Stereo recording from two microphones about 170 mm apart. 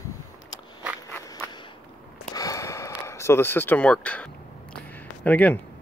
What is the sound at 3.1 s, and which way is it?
Speech, 15° left (ahead or behind).